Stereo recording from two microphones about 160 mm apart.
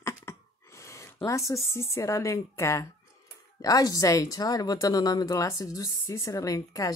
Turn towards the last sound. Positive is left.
turn(degrees=20)  # may be behind; listen again after turning